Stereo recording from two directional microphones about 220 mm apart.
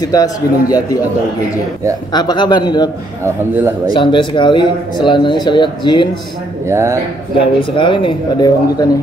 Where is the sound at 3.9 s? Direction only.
20° left (ahead or behind).